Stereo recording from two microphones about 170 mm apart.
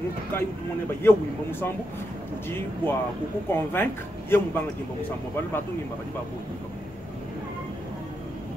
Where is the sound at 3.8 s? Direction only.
10° left (ahead or behind).